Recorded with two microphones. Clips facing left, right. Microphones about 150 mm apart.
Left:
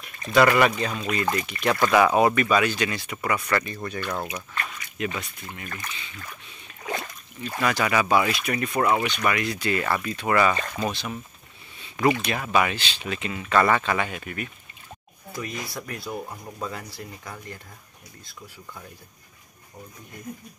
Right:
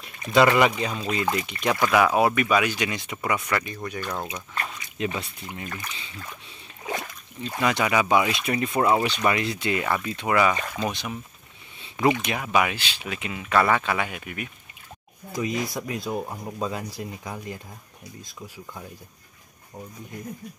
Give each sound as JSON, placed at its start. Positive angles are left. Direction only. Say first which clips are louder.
{"t": 0.2, "sound": "speech", "louder": "even", "side_deg": -20}
{"t": 1.9, "sound": "speech", "louder": "left 1 dB", "side_deg": -5}
{"t": 4.3, "sound": "speech", "louder": "even", "side_deg": -25}
{"t": 15.7, "sound": "speech", "louder": "right 4 dB", "side_deg": -20}